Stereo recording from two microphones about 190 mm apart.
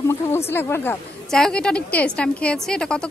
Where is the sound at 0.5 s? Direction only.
10° left (ahead or behind).